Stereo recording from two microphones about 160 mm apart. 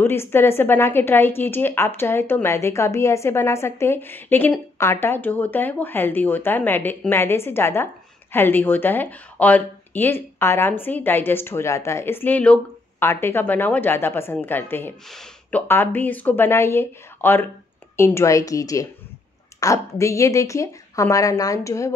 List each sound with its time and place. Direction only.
0.0 s a woman's voice: 15° left (ahead or behind)
15.0 s speech: centre (ahead or behind)
15.7 s a woman's voice: 10° left (ahead or behind)